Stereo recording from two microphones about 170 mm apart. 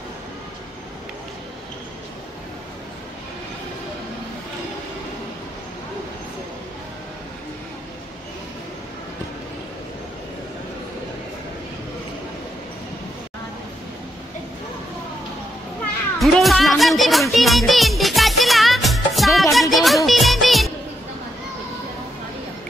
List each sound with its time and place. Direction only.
16.2 s music: centre (ahead or behind)